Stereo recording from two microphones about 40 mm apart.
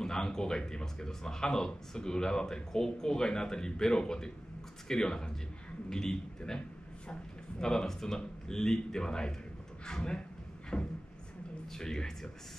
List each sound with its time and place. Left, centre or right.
0.0 s speech: centre